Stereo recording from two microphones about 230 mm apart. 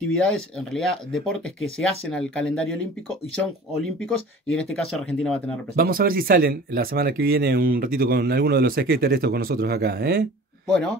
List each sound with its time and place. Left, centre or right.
0.1 s speech: centre
3.8 s speech: centre
5.8 s speech: right